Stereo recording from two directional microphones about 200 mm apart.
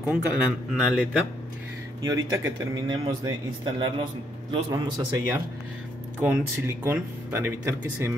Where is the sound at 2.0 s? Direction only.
20° right (ahead or behind).